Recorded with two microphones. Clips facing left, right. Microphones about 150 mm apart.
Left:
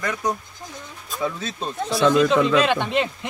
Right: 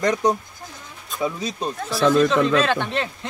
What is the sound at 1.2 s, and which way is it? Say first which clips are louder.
Speech: right 2 dB; 15° right (ahead or behind).